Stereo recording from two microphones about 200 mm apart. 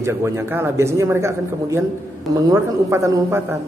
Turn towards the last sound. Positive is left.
turn(degrees=-15)  # may be behind; listen again after turning